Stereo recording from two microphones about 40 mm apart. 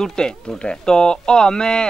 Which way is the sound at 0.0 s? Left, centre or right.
Centre.